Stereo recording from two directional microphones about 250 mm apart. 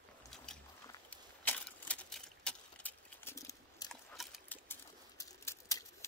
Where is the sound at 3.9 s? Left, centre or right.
Centre.